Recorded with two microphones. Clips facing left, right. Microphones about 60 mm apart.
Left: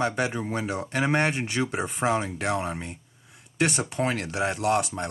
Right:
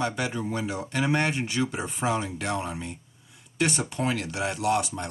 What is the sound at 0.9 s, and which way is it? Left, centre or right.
Speech, left.